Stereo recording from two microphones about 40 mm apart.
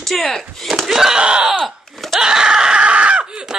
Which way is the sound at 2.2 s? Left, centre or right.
Centre.